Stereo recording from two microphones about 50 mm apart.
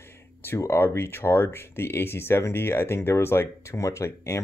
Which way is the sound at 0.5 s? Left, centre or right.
Left.